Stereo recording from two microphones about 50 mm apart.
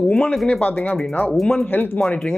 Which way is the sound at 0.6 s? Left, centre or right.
Left.